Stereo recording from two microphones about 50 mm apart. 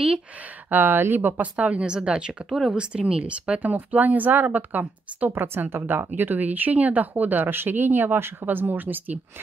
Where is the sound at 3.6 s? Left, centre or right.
Right.